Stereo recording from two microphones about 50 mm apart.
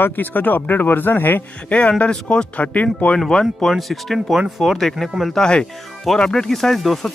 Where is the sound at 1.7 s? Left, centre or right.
Left.